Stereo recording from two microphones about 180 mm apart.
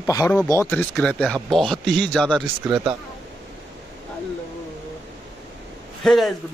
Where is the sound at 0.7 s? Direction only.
5° left (ahead or behind).